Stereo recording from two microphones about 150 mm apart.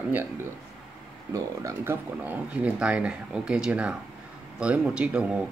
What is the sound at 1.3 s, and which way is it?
Speech, 20° right (ahead or behind).